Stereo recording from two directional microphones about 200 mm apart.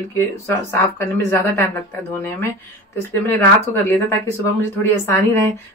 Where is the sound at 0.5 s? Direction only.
10° left (ahead or behind).